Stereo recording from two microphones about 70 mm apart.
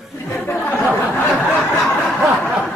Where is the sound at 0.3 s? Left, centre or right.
Left.